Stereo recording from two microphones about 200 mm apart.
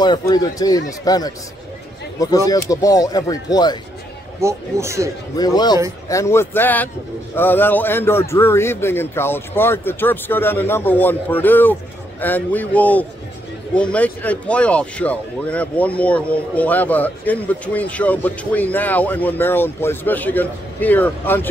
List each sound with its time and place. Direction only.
0.0 s a man's voice: 20° left (ahead or behind)
4.4 s speech: 15° right (ahead or behind)
5.4 s a man's voice: 20° left (ahead or behind)